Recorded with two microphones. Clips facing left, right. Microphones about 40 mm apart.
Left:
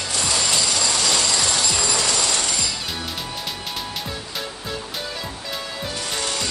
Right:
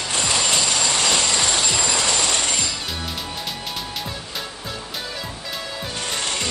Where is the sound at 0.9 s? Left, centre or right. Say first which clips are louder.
Right 1 dB; right.